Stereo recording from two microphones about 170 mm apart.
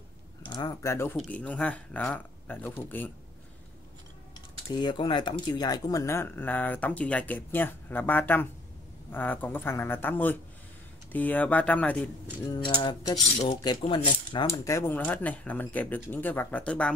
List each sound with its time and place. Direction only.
0.5 s speech: 20° left (ahead or behind)
1.1 s speech: 5° left (ahead or behind)
4.7 s speech: 30° left (ahead or behind); by 12.1 s 10° left (ahead or behind)
12.4 s speech: 30° left (ahead or behind)
14.5 s speech: 15° left (ahead or behind)